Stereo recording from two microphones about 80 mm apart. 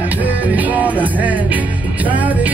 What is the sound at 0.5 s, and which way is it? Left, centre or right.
Music, centre.